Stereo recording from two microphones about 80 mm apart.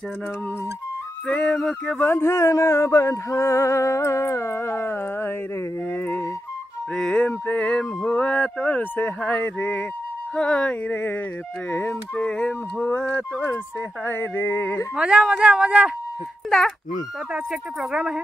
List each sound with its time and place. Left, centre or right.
1.2 s speech: centre
2.0 s a sound: left
7.0 s speech: centre
15.0 s speech: centre
16.4 s speech: centre
17.3 s speech: centre